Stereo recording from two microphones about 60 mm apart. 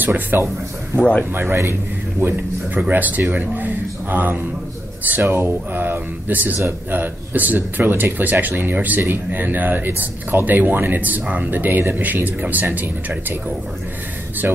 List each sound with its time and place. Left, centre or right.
0.0 s speech: right
0.9 s speech: left
1.3 s speech: right
2.7 s speech: right
14.4 s speech: right